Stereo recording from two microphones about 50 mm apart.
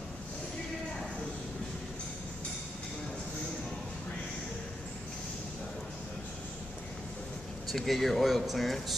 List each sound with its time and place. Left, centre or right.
7.6 s speech: centre